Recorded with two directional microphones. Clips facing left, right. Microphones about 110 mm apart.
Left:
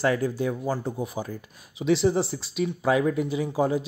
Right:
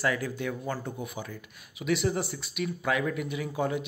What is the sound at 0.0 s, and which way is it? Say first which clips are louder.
Speech: left 6 dB; 30° left (ahead or behind).